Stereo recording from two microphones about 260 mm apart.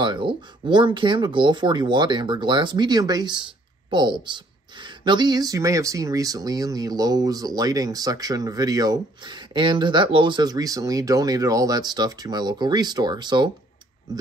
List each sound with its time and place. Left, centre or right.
0.0 s speech: centre